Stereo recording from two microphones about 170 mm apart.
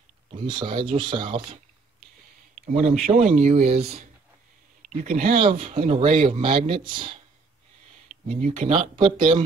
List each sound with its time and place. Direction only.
0.3 s speech: 30° right (ahead or behind)
2.5 s speech: 45° right (ahead or behind)
4.8 s speech: 50° right (ahead or behind); by 7.2 s 25° right (ahead or behind)
8.1 s a sound: 45° right (ahead or behind)
8.5 s speech: 35° right (ahead or behind)